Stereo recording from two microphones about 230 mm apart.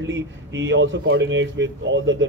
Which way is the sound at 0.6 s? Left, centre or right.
Right.